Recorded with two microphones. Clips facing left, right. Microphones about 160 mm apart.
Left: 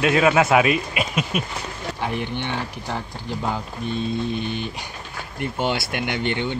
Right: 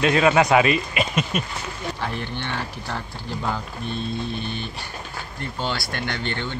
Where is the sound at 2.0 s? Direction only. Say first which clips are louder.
Left 7 dB; 15° left (ahead or behind).